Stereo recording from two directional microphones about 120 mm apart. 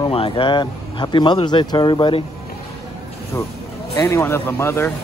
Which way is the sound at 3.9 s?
20° left (ahead or behind).